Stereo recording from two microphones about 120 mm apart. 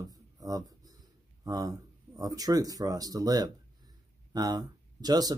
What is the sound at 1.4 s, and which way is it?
Speech, 30° right (ahead or behind).